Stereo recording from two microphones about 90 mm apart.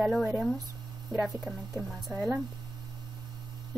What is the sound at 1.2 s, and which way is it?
Speech, 5° right (ahead or behind).